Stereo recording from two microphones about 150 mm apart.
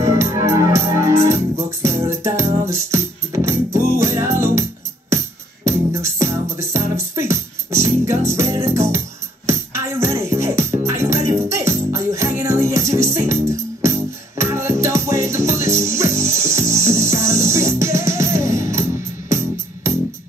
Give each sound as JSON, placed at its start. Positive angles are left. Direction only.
{"t": 0.0, "sound": "music", "side_deg": -20}